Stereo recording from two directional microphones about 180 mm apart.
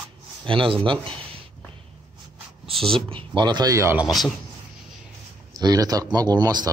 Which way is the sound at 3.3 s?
25° right (ahead or behind).